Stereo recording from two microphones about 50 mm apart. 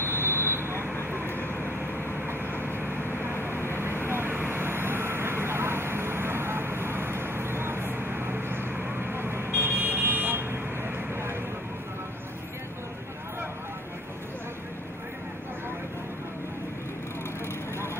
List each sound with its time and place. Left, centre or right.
0.0 s vehicle: right
1.4 s vehicle: left
2.5 s vehicle: right